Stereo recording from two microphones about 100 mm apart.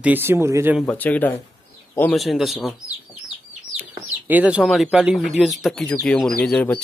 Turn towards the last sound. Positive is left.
turn(degrees=10)  # may be behind; listen again after turning